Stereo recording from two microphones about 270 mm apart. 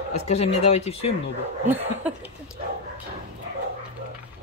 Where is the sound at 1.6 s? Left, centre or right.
Centre.